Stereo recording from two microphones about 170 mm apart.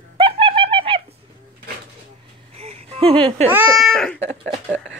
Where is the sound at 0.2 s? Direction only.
30° right (ahead or behind).